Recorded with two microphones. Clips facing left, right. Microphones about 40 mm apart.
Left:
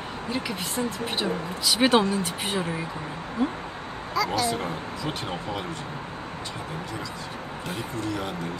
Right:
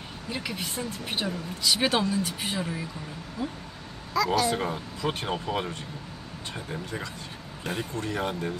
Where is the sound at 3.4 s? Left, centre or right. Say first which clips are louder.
Left 7 dB; left.